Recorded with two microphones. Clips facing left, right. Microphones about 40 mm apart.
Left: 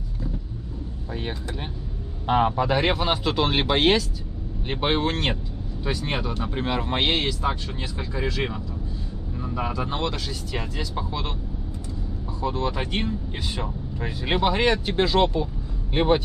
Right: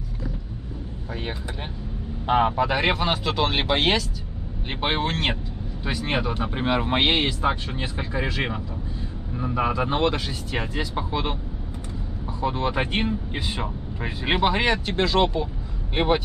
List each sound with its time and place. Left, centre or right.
2.2 s speech: centre
12.4 s speech: right
14.7 s speech: centre
15.9 s speech: right